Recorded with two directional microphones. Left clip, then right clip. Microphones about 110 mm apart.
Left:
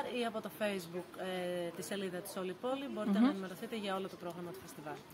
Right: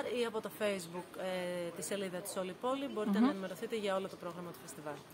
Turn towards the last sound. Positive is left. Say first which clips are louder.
# right 3 dB
turn(degrees=-35)  # may be behind; listen again after turning